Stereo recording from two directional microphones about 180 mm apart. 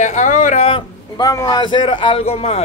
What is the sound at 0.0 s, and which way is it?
Speech, 45° left (ahead or behind).